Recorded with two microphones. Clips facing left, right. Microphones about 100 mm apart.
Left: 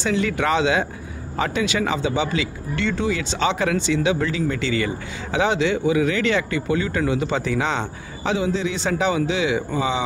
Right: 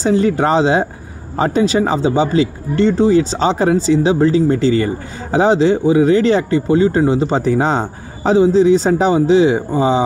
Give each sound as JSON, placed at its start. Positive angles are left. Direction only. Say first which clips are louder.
{"t": 0.0, "sound": "speech", "louder": "right 8 dB", "side_deg": -35}